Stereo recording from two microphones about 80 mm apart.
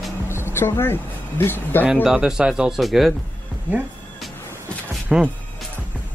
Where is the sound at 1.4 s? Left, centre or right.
Left.